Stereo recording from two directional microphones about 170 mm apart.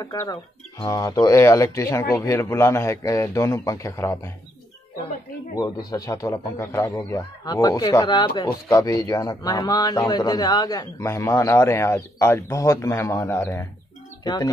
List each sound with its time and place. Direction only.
0.0 s a man's voice: 20° left (ahead or behind)
5.5 s a man's voice: 20° left (ahead or behind)